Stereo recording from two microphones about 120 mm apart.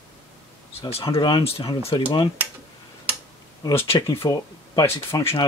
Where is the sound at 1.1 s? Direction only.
40° left (ahead or behind).